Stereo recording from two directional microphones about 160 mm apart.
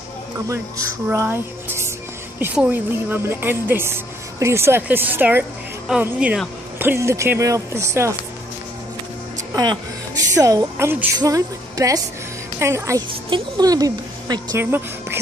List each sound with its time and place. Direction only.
0.5 s speech: 20° right (ahead or behind)
9.6 s a woman's voice: 25° right (ahead or behind)